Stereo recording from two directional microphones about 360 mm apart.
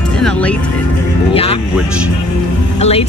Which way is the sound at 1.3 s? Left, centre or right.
Centre.